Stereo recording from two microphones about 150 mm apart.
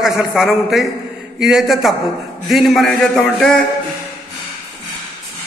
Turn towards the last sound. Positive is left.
turn(degrees=5)  # may be behind; listen again after turning